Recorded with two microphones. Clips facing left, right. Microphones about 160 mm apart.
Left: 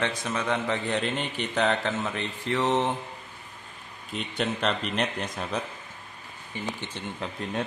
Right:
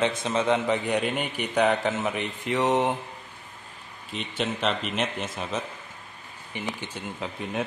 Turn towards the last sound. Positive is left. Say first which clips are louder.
# right 1 dB
turn(degrees=-5)  # may be behind; listen again after turning